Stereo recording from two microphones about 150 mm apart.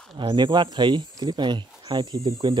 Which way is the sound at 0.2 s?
30° right (ahead or behind).